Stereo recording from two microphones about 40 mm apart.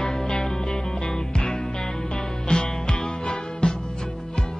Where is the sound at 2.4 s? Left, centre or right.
Centre.